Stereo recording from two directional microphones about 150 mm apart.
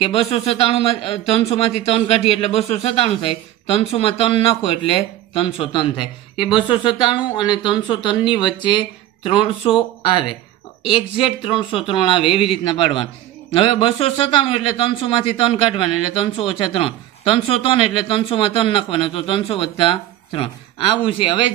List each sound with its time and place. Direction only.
0.0 s a man's voice: 40° left (ahead or behind)